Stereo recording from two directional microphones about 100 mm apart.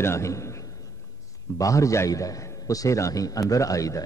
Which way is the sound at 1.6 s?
35° left (ahead or behind).